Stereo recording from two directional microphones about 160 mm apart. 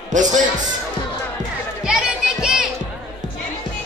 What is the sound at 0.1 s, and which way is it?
Speech, 50° right (ahead or behind).